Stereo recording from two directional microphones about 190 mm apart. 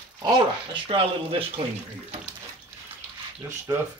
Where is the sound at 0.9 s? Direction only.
30° right (ahead or behind).